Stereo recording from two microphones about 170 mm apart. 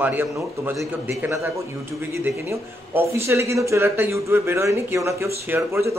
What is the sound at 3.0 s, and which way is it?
Speech, 15° right (ahead or behind).